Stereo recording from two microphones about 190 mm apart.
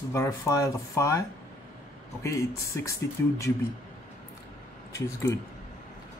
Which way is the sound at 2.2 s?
15° left (ahead or behind).